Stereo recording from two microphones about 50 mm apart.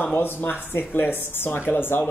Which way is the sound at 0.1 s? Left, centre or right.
Left.